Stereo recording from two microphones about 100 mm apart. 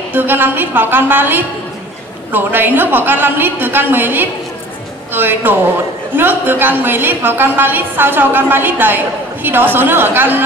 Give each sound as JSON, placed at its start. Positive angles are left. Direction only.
{"t": 0.1, "sound": "a woman's voice", "side_deg": -20}